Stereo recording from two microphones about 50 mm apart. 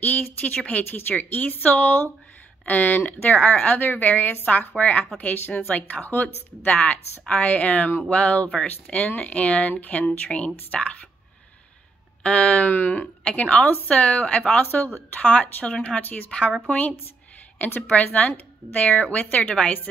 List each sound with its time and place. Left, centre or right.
0.0 s a sound: left
0.7 s a woman's voice: left
12.2 s a woman's voice: left
12.7 s speech: left
13.0 s a woman's voice: centre
16.0 s speech: left
16.3 s a woman's voice: left
18.0 s a woman's voice: left